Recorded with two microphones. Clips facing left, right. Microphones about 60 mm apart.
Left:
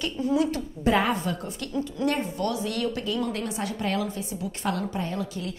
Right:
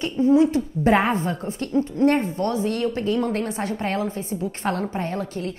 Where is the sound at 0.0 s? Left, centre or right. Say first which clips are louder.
Right 7 dB; right.